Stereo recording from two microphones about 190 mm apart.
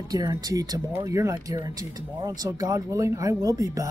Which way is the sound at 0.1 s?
20° right (ahead or behind).